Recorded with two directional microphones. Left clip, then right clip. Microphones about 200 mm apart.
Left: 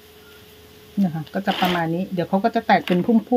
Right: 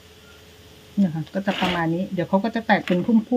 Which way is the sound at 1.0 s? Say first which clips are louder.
Even; 35° left (ahead or behind).